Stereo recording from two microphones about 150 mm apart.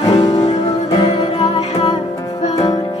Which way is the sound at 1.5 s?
45° left (ahead or behind).